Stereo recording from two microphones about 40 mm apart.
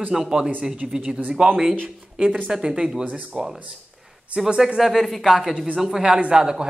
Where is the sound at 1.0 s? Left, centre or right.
Right.